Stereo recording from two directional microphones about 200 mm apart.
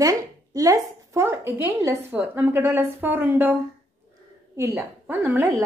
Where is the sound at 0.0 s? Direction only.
15° right (ahead or behind).